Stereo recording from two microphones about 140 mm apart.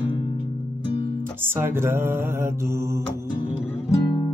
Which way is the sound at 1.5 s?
15° right (ahead or behind).